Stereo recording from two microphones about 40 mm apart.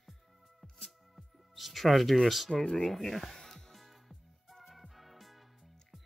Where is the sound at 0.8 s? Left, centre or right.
Centre.